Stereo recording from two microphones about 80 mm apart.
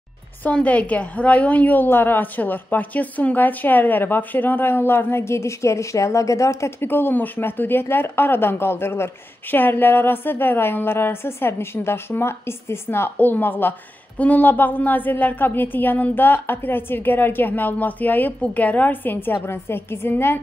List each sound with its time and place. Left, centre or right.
0.4 s speech: centre; by 6.9 s left
6.9 s speech: left